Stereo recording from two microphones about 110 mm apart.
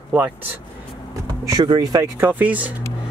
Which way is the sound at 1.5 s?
35° right (ahead or behind).